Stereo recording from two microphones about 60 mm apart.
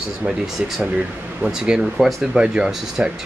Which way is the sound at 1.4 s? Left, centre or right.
Centre.